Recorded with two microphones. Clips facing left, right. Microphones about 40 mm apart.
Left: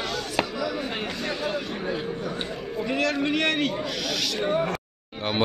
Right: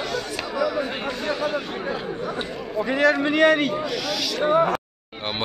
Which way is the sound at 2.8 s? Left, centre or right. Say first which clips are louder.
Right 6 dB; right.